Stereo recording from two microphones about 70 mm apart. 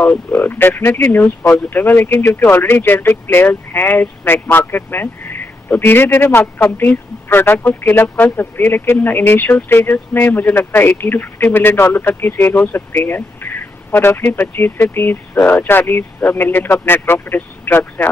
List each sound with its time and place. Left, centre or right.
0.0 s speech: left